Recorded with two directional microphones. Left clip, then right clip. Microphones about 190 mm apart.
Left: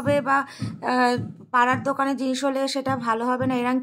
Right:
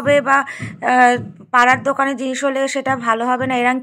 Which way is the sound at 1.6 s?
20° right (ahead or behind).